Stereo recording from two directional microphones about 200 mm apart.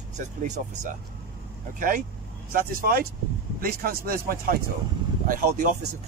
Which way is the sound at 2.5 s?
50° right (ahead or behind).